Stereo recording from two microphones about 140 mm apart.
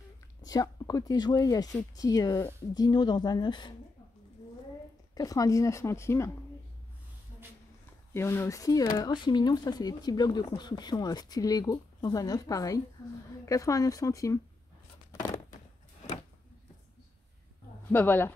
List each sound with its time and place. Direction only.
0.4 s speech: 25° left (ahead or behind)
5.1 s speech: 25° left (ahead or behind)
8.1 s speech: 20° left (ahead or behind)
17.9 s speech: 15° left (ahead or behind)